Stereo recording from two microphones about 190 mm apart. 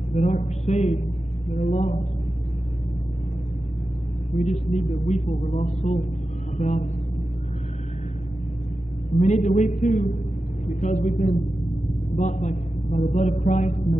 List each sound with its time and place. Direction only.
0.1 s speech: 35° left (ahead or behind)
4.4 s speech: 35° left (ahead or behind)
9.2 s speech: 40° left (ahead or behind)